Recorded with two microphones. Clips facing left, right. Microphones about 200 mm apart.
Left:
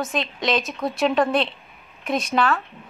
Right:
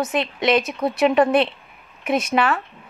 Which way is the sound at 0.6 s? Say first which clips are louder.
Right 4 dB; centre (ahead or behind).